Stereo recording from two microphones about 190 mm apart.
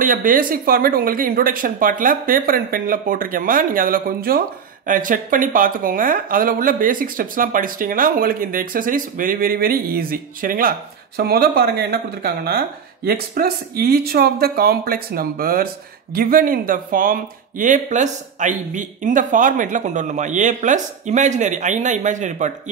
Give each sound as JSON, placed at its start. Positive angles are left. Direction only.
{"t": 0.0, "sound": "speech", "side_deg": -45}